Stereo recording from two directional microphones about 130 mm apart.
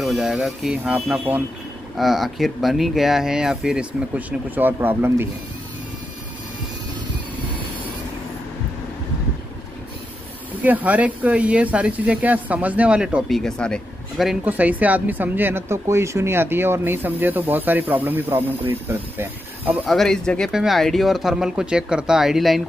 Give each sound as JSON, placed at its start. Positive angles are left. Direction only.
{"t": 0.0, "sound": "speech", "side_deg": 0}
{"t": 10.6, "sound": "speech", "side_deg": -10}
{"t": 13.4, "sound": "speech", "side_deg": 5}
{"t": 14.4, "sound": "speech", "side_deg": -10}
{"t": 19.8, "sound": "speech", "side_deg": 0}